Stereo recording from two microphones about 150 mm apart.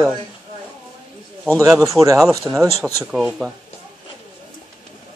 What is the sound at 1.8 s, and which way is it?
Speech, 20° right (ahead or behind).